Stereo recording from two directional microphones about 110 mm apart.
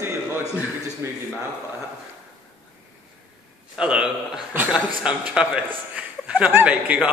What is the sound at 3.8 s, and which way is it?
A man's voice, 10° right (ahead or behind).